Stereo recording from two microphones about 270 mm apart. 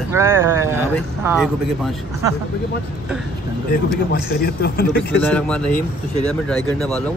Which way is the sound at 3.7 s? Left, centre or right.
Left.